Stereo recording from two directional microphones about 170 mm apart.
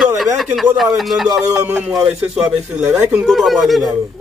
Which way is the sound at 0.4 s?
5° right (ahead or behind).